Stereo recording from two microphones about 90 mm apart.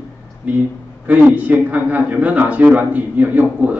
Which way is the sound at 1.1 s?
15° right (ahead or behind).